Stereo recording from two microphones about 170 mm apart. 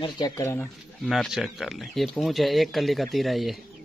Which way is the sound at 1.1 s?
Centre (ahead or behind).